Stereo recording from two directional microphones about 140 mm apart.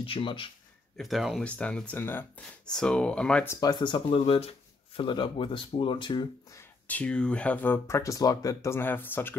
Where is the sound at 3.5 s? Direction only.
25° left (ahead or behind).